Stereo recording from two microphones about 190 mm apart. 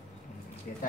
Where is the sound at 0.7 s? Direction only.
50° left (ahead or behind).